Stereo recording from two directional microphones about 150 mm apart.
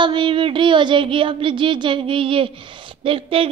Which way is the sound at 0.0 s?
35° right (ahead or behind).